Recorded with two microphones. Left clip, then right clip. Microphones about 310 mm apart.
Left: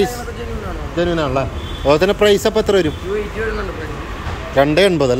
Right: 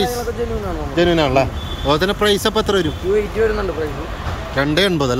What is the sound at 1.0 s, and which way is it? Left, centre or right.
Speech, centre.